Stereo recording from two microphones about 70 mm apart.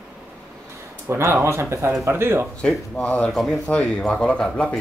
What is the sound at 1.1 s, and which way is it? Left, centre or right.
Speech, right.